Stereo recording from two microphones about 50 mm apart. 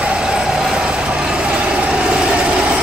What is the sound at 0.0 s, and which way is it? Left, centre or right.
Vehicle, centre.